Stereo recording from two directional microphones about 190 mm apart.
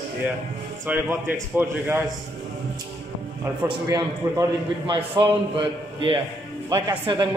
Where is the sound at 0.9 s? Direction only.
10° right (ahead or behind).